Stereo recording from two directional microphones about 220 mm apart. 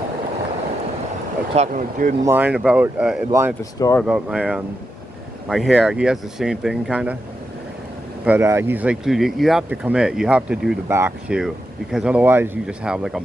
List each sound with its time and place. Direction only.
1.5 s speech: 35° right (ahead or behind)
2.2 s speech: 10° right (ahead or behind)
8.3 s speech: 10° right (ahead or behind)